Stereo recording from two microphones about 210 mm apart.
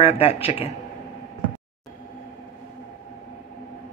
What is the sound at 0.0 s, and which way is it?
Speech, 30° left (ahead or behind).